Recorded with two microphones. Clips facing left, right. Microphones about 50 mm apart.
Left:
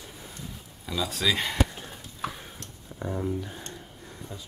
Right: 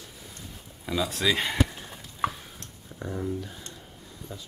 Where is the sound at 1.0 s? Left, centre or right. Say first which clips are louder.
Even; centre.